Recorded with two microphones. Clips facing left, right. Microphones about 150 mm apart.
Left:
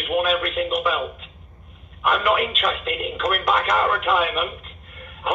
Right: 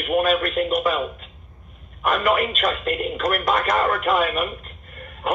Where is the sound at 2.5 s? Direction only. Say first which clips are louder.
Right 2 dB; 45° right (ahead or behind).